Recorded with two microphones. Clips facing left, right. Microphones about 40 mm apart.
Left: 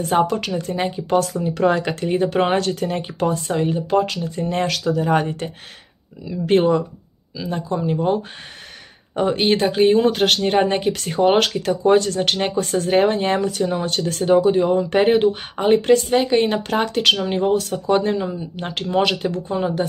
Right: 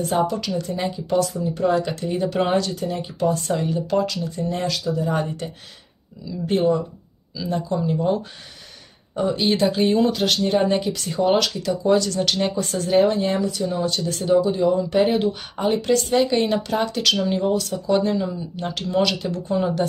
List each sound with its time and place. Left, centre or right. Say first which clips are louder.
0.1 s speech: left 5 dB; left
1.5 s speech: left 4 dB; left
2.0 s speech: left 4 dB; left
2.6 s speech: left 3 dB; left
3.1 s speech: right 1 dB; left
3.6 s speech: left 5 dB; left
7.3 s speech: even; left
9.1 s speech: left 3 dB; left
10.0 s speech: left 3 dB; left
16.1 s speech: left 2 dB; left
16.6 s speech: left 3 dB; left